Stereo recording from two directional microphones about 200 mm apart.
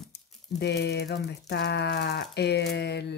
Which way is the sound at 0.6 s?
55° left (ahead or behind).